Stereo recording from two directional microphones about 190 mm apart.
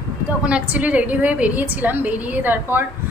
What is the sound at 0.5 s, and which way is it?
A woman's voice, 5° right (ahead or behind).